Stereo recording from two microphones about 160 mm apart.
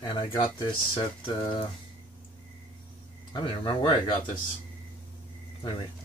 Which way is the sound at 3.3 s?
30° left (ahead or behind).